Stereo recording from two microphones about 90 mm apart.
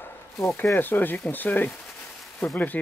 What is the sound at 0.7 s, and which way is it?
Speech, 20° left (ahead or behind).